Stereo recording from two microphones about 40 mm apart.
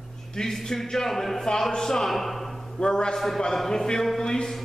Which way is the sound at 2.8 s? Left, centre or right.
Centre.